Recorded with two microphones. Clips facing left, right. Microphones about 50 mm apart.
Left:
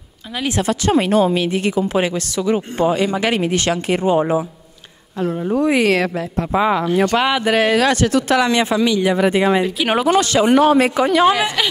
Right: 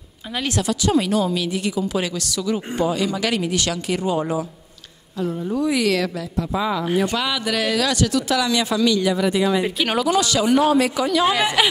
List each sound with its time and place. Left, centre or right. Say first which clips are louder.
0.7 s a woman's voice: left 3 dB; left
5.2 s a woman's voice: left 4 dB; left
9.1 s a woman's voice: left 4 dB; left
11.3 s speech: even; centre